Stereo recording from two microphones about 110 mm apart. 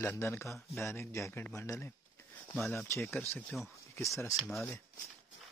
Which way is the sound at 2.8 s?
20° left (ahead or behind).